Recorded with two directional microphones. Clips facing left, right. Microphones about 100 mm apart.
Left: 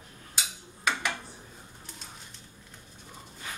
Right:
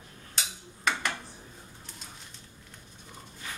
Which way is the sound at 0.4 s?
5° left (ahead or behind).